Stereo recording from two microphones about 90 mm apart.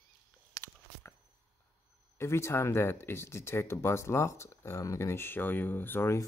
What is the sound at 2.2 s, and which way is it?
Speech, 30° left (ahead or behind).